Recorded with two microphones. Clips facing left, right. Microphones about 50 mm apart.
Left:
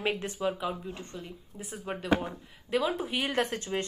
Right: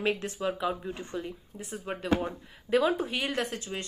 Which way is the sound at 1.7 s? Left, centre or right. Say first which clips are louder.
Even; centre.